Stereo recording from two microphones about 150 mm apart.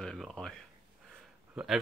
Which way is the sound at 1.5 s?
Centre (ahead or behind).